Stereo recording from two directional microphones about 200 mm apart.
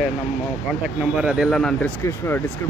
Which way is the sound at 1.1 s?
5° right (ahead or behind).